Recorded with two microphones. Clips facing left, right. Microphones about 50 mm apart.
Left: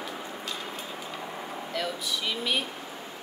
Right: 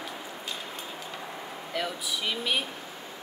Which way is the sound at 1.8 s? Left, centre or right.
Centre.